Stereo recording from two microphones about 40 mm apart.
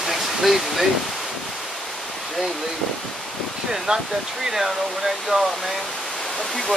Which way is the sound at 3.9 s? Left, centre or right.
Right.